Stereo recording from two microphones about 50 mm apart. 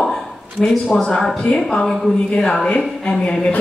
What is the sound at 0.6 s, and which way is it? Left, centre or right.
Speech, centre.